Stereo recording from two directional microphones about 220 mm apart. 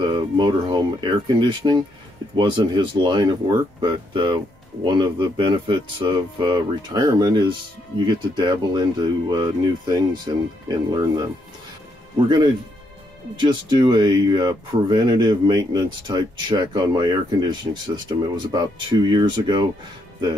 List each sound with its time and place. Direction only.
0.0 s speech: 20° right (ahead or behind)
13.4 s speech: 20° right (ahead or behind)